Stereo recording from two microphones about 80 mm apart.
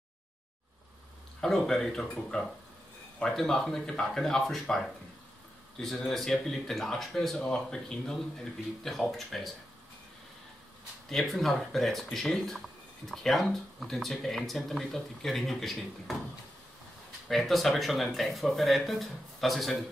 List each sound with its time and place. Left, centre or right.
1.4 s speech: centre
11.1 s speech: centre
17.3 s speech: centre